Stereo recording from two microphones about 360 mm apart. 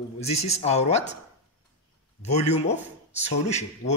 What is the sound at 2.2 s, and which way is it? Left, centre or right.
A man's voice, centre.